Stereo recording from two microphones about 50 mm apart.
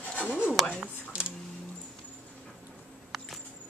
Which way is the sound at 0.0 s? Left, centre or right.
Left.